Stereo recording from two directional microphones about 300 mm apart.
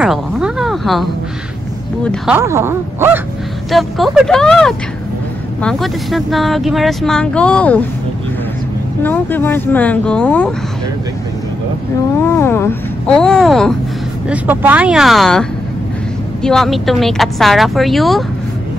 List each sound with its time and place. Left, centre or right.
0.0 s speech: centre
2.0 s speech: centre
9.0 s speech: centre
12.2 s speech: centre
16.4 s speech: centre